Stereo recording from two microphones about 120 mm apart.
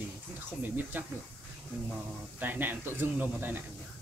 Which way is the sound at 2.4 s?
15° right (ahead or behind).